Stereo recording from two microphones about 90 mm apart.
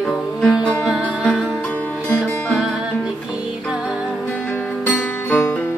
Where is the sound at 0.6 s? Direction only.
10° right (ahead or behind).